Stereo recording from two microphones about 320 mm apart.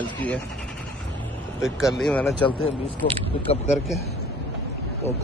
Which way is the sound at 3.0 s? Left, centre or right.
Left.